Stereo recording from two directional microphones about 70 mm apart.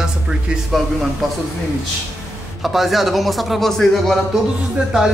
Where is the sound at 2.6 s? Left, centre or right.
Centre.